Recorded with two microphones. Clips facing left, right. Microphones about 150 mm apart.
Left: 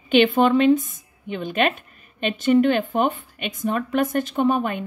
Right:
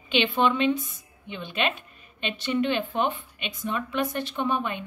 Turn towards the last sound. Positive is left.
turn(degrees=45)  # may be behind; listen again after turning